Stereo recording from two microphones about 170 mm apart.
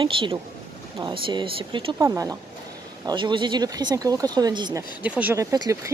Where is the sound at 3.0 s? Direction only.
25° right (ahead or behind).